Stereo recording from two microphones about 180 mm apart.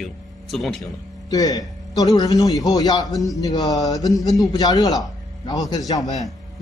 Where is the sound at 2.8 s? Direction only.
20° left (ahead or behind).